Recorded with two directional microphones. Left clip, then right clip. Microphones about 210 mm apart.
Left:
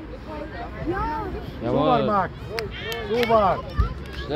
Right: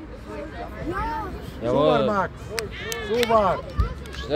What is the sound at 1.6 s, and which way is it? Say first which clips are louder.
Speech: right 1 dB; 55° right (ahead or behind).